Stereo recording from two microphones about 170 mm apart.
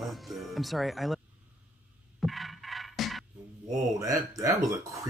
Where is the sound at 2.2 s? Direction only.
Centre (ahead or behind).